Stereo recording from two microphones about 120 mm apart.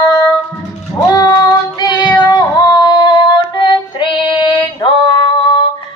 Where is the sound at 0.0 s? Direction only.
35° left (ahead or behind).